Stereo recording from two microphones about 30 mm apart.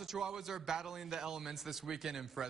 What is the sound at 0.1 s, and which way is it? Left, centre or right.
A man's voice, centre.